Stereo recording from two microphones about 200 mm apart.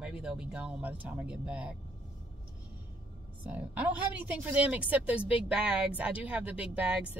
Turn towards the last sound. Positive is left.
turn(degrees=-5)  # may be behind; listen again after turning